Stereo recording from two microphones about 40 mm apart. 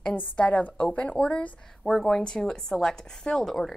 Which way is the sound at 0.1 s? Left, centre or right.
Left.